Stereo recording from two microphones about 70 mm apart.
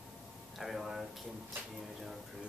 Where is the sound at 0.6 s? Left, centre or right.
Centre.